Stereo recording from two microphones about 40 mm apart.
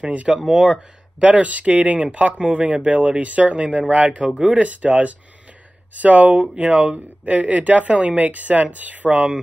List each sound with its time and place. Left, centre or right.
0.0 s speech: right
4.4 s speech: right
4.6 s speech: right
6.5 s speech: right